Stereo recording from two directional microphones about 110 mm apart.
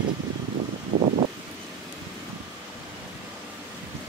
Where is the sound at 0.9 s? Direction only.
55° right (ahead or behind).